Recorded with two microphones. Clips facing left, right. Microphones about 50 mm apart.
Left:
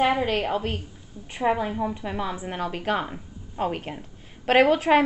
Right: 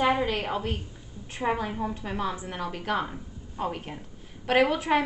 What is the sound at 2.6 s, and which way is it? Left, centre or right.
A woman's voice, left.